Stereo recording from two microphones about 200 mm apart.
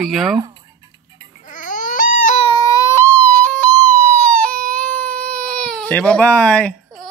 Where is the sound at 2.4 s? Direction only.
20° left (ahead or behind).